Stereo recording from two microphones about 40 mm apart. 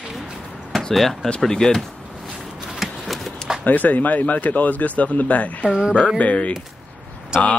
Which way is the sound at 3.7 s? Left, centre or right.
Left.